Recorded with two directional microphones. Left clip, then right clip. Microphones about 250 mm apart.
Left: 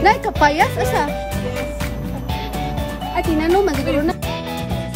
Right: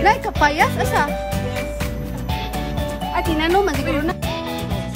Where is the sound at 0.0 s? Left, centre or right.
Centre.